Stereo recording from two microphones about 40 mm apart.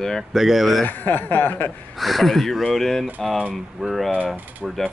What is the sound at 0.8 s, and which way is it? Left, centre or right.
Speech, left.